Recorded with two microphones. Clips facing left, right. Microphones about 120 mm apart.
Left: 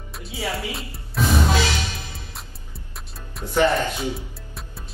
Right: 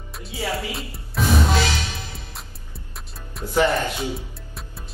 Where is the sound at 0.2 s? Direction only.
Centre (ahead or behind).